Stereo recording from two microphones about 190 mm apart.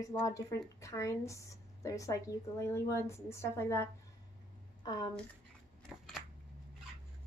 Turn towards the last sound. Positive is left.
turn(degrees=0)  # may be behind; listen again after turning